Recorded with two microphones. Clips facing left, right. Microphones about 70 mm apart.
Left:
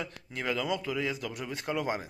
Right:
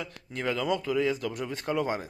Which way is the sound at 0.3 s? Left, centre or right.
Centre.